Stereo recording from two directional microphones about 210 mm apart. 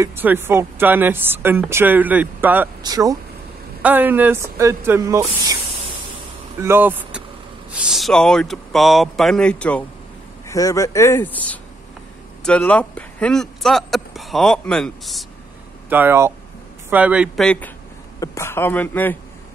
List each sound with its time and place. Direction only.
0.0 s speech: 10° right (ahead or behind)
6.6 s speech: 10° right (ahead or behind)
15.9 s speech: 10° right (ahead or behind)
18.2 s speech: 15° left (ahead or behind)